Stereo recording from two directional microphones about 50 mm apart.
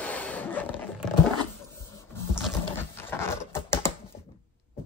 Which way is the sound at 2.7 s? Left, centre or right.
Left.